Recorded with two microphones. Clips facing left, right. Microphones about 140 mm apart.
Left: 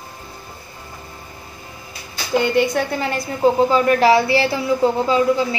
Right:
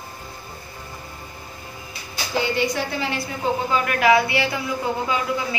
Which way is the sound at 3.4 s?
35° left (ahead or behind).